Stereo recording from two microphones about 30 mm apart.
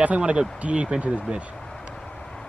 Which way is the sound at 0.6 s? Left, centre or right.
Right.